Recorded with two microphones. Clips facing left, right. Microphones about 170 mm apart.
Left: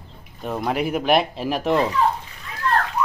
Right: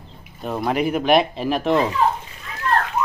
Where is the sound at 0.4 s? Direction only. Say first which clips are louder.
Right 2 dB; 5° right (ahead or behind).